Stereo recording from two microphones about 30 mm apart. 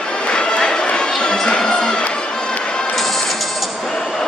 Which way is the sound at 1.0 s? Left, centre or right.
Left.